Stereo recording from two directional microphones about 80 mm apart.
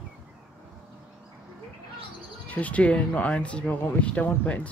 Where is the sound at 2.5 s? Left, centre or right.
Centre.